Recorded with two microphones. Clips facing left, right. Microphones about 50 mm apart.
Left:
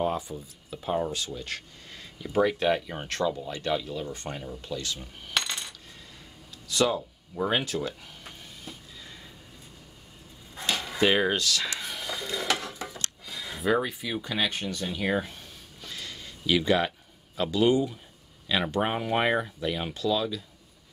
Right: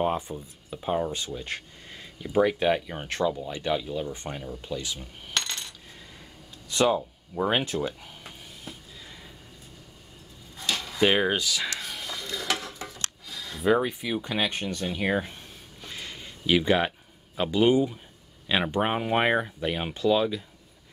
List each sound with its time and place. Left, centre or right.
0.0 s speech: right
5.3 s a sound: centre
6.7 s speech: right
8.2 s music: centre
10.7 s cutlery: centre
11.0 s speech: centre
11.9 s a sound: centre
12.4 s gears: centre
13.2 s a sound: centre
14.2 s speech: centre
14.9 s a sound: centre
17.4 s speech: right